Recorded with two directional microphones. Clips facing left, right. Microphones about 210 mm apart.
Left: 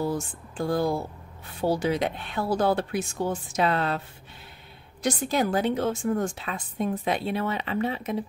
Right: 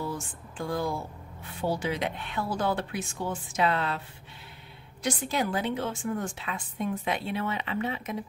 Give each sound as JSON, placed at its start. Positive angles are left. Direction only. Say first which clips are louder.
{"t": 0.0, "sound": "a woman's voice", "louder": "left 6 dB", "side_deg": 35}
{"t": 5.0, "sound": "a woman's voice", "louder": "left 4 dB", "side_deg": 40}